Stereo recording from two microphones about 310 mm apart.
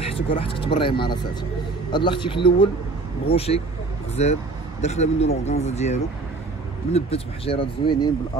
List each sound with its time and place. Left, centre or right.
0.0 s speech: centre